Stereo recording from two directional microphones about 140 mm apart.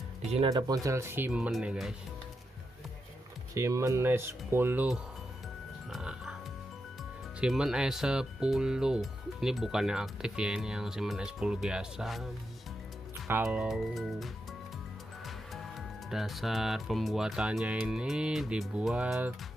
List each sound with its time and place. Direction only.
0.2 s speech: 50° right (ahead or behind)
0.5 s speech: 25° right (ahead or behind); by 2.0 s 5° right (ahead or behind)
3.5 s speech: 20° right (ahead or behind)
5.9 s music: 5° right (ahead or behind)
7.3 s speech: 5° right (ahead or behind)
13.3 s speech: 10° right (ahead or behind)